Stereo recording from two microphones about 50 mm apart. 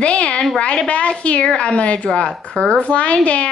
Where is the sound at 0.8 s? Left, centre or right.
Left.